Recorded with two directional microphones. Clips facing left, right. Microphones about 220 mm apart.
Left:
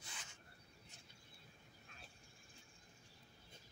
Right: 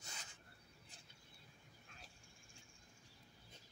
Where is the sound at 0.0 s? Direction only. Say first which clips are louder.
Right 1 dB; 40° right (ahead or behind).